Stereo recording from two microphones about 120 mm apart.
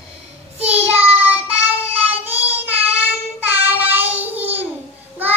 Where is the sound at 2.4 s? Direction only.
15° right (ahead or behind).